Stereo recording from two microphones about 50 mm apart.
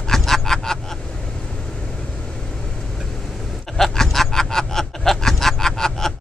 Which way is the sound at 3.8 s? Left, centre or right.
Centre.